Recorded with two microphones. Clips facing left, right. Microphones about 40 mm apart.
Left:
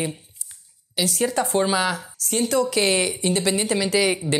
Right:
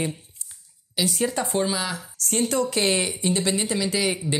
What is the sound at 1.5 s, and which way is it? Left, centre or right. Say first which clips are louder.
Speech: left 4 dB; left.